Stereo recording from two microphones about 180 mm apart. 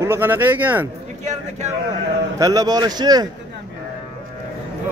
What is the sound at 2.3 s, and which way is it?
Speech, 20° right (ahead or behind).